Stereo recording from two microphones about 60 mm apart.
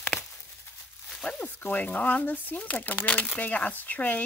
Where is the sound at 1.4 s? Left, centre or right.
Left.